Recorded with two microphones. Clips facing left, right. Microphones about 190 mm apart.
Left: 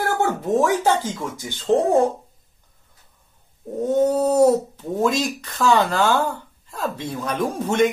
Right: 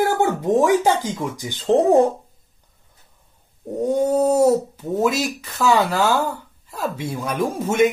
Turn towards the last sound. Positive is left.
turn(degrees=-10)  # may be behind; listen again after turning